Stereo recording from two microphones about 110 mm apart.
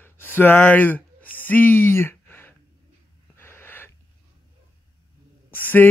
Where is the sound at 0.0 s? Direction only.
20° left (ahead or behind).